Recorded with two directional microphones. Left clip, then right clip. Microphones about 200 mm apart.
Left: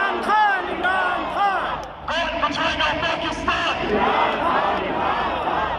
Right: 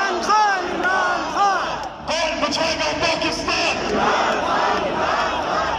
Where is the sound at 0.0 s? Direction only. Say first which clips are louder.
Right 1 dB; centre (ahead or behind).